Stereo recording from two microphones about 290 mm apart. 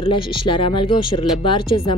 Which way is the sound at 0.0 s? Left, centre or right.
Centre.